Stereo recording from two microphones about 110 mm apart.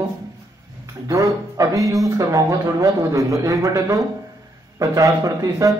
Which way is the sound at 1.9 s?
30° right (ahead or behind).